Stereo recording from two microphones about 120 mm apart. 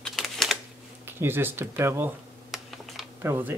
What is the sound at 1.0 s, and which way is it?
Speech, 20° right (ahead or behind).